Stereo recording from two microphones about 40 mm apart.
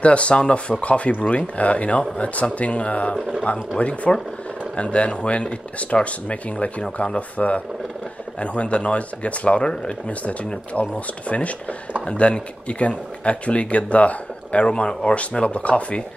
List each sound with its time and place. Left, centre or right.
0.0 s speech: left
6.8 s speech: left
7.2 s speech: left